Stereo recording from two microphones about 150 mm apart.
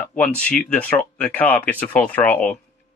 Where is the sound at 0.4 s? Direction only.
10° left (ahead or behind).